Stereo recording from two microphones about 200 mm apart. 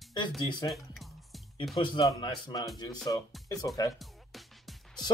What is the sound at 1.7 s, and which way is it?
Speech, 25° left (ahead or behind).